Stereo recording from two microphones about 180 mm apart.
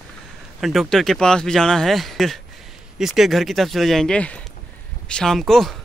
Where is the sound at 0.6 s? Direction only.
Centre (ahead or behind).